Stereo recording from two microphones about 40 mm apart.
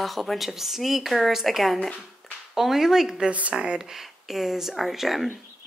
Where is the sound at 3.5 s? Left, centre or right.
Right.